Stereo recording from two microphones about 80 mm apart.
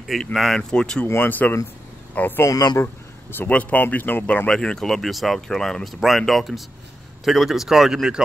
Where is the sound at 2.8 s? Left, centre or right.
Left.